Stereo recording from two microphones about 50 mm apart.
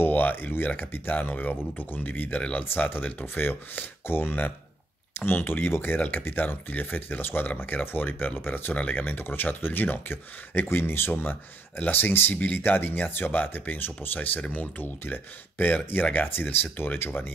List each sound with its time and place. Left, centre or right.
0.0 s a sound: left
1.1 s speech: left
5.9 s speech: left
8.7 s speech: left
9.0 s speech: left